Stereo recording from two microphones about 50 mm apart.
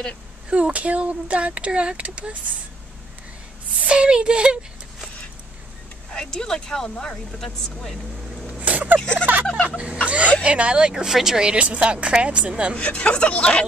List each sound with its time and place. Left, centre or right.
0.5 s speech: right
3.8 s speech: right
6.1 s speech: centre
8.5 s a sound: right
9.2 s speech: right; by 11.4 s centre
11.4 s speech: right
12.7 s speech: left